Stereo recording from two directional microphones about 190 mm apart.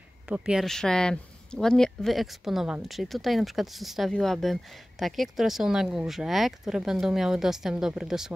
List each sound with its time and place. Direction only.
0.3 s speech: 5° right (ahead or behind)